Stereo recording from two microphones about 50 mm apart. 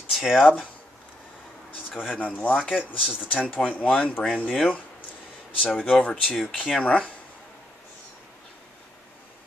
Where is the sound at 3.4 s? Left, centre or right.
Left.